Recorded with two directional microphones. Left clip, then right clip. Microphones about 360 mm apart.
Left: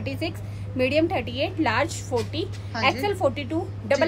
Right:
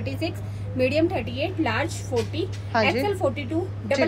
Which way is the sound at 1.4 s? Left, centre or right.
Centre.